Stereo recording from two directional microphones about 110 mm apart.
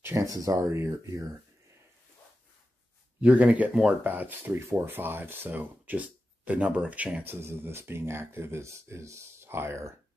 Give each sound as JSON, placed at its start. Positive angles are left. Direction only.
{"t": 0.0, "sound": "speech", "side_deg": -25}
{"t": 3.2, "sound": "speech", "side_deg": -10}